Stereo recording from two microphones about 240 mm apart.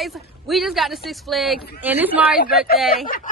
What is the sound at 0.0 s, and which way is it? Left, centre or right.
A woman's voice, centre.